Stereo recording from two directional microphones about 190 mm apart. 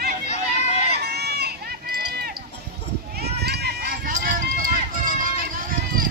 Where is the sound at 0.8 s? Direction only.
60° right (ahead or behind).